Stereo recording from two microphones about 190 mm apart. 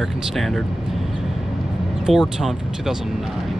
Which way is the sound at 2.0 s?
Centre (ahead or behind).